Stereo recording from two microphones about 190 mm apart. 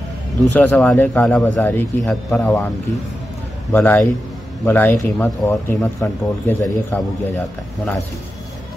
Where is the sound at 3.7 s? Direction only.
10° left (ahead or behind).